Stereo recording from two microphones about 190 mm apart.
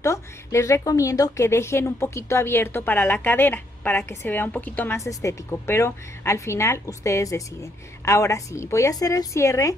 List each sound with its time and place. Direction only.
0.0 s a woman's voice: 15° left (ahead or behind)